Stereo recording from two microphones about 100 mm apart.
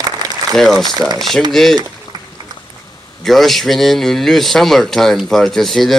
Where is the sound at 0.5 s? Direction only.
Centre (ahead or behind).